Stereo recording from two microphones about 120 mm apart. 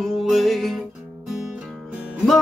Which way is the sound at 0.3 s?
Centre (ahead or behind).